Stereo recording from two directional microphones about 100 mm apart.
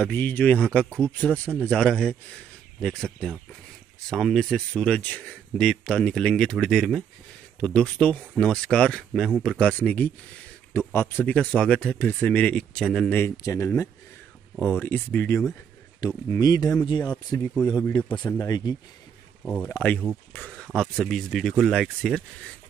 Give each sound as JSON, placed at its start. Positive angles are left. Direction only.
{"t": 0.0, "sound": "speech", "side_deg": 15}
{"t": 13.4, "sound": "speech", "side_deg": 30}
{"t": 14.6, "sound": "speech", "side_deg": 20}
{"t": 16.3, "sound": "speech", "side_deg": 40}
{"t": 18.4, "sound": "speech", "side_deg": 45}
{"t": 19.4, "sound": "speech", "side_deg": 10}